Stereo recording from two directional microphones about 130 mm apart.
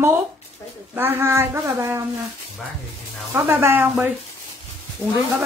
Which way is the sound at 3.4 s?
15° right (ahead or behind).